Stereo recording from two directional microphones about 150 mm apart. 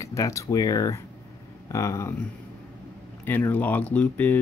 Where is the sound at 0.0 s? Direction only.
20° left (ahead or behind).